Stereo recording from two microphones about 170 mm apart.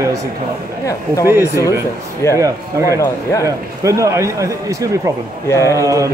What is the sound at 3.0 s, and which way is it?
Speech, 20° left (ahead or behind).